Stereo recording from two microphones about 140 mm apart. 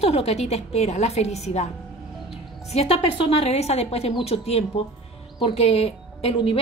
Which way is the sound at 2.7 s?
45° left (ahead or behind).